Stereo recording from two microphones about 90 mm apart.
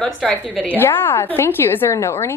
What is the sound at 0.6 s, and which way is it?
A woman's voice, 25° left (ahead or behind).